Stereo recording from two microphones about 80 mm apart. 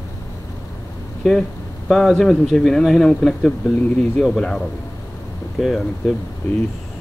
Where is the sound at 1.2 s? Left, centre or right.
Centre.